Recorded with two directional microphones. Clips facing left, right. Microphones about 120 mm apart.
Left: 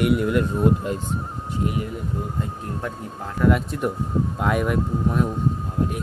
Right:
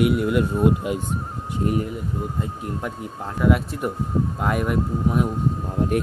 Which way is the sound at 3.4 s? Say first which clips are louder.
Left 1 dB; centre (ahead or behind).